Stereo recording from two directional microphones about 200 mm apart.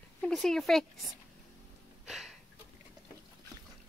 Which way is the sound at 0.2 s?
Centre (ahead or behind).